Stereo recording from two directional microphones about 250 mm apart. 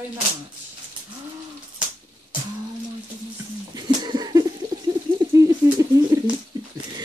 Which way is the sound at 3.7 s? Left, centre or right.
Centre.